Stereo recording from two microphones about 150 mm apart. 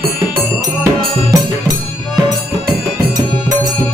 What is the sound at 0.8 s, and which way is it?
Music, 20° right (ahead or behind).